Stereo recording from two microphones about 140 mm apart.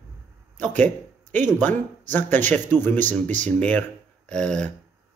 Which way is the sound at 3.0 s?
60° right (ahead or behind).